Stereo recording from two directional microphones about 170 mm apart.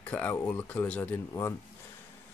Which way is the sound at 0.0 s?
10° left (ahead or behind).